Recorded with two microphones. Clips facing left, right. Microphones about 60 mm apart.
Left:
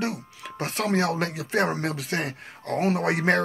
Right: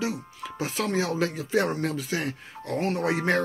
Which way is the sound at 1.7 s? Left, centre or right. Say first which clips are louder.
Even; left.